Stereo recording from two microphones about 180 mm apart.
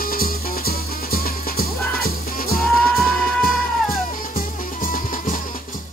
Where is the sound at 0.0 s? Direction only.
55° left (ahead or behind).